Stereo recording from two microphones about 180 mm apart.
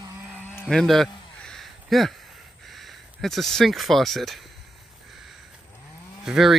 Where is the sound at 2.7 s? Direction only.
Centre (ahead or behind).